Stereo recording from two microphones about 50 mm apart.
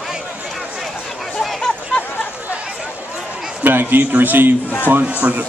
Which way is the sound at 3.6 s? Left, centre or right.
Right.